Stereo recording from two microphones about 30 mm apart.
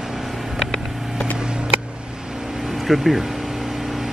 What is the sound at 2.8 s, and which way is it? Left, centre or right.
Speech, centre.